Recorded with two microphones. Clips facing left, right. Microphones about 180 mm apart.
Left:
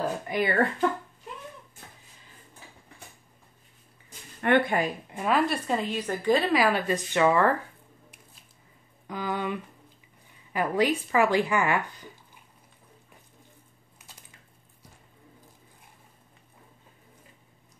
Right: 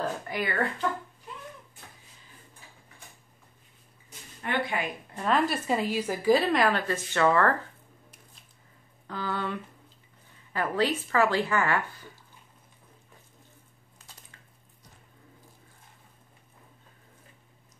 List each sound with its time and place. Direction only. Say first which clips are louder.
0.0 s speech: left 4 dB; 20° left (ahead or behind)
4.4 s speech: left 7 dB; 55° left (ahead or behind)
5.1 s a woman's voice: even; 10° left (ahead or behind)
5.5 s a woman's voice: even; 5° right (ahead or behind); by 7.5 s 15° left (ahead or behind)
9.0 s a woman's voice: left 2 dB; 15° left (ahead or behind)